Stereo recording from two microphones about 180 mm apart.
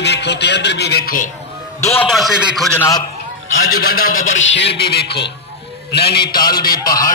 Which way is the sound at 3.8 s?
55° left (ahead or behind).